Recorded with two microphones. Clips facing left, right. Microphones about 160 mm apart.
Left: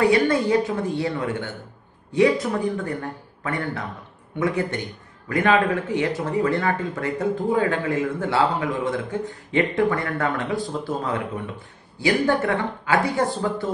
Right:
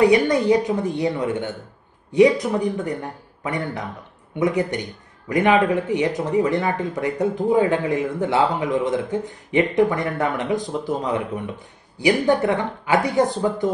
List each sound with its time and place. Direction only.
0.0 s a man's voice: 20° right (ahead or behind)